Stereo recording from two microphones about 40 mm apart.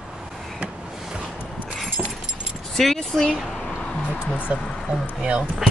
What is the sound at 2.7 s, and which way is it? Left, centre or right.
Speech, centre.